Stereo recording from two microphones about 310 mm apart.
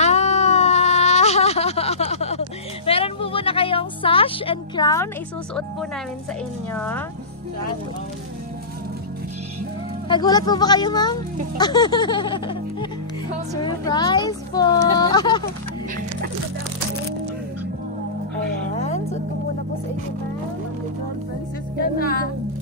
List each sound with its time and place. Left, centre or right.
0.0 s a sound: left
6.7 s speech: centre
10.0 s speech: centre
13.6 s speech: centre
21.7 s speech: left